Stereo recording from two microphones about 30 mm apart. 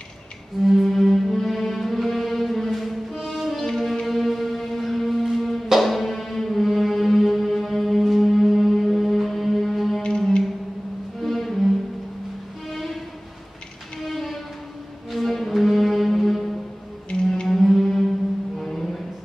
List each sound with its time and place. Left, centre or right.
0.6 s music: centre
4.0 s shofar: centre
5.2 s music: centre
11.1 s cello: centre
12.6 s music: centre
14.0 s music: centre
17.1 s music: left
17.5 s music: centre